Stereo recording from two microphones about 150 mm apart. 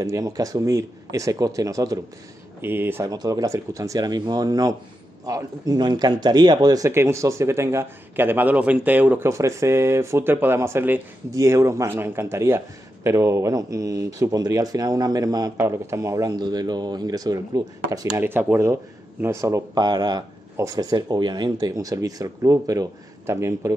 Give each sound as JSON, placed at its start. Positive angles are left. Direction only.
{"t": 0.0, "sound": "speech", "side_deg": -25}
{"t": 3.1, "sound": "speech", "side_deg": -25}
{"t": 18.2, "sound": "speech", "side_deg": -15}